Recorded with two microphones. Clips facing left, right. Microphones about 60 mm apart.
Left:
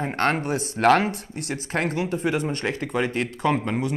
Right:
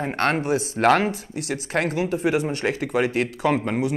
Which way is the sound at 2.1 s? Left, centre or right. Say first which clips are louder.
Right 2 dB; centre.